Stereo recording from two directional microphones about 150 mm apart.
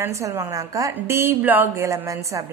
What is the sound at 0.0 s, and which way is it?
A woman's voice, 20° right (ahead or behind).